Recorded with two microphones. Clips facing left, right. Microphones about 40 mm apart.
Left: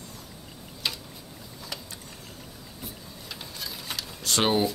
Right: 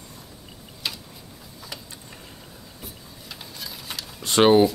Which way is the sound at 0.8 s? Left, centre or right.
Centre.